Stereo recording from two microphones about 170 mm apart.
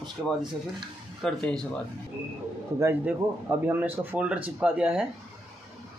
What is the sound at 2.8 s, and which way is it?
Speech, 15° right (ahead or behind).